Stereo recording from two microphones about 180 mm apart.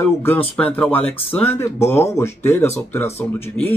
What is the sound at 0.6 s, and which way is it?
Speech, 5° left (ahead or behind).